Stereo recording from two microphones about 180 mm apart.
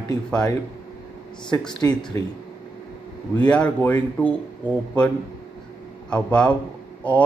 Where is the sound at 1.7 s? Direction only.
20° left (ahead or behind).